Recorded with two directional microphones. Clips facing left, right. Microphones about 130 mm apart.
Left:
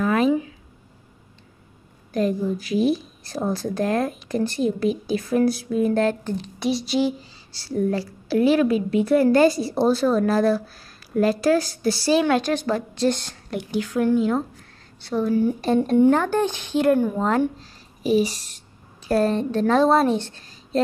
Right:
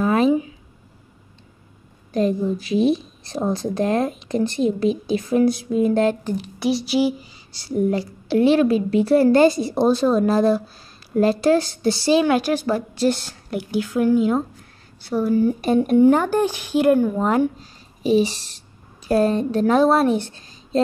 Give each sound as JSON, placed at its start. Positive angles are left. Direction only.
{"t": 0.0, "sound": "a sound", "side_deg": -30}
{"t": 2.1, "sound": "speech", "side_deg": -25}
{"t": 18.0, "sound": "speech", "side_deg": -25}
{"t": 19.0, "sound": "speech", "side_deg": -15}